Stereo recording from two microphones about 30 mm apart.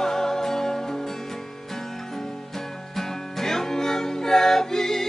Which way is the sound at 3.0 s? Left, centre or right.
Centre.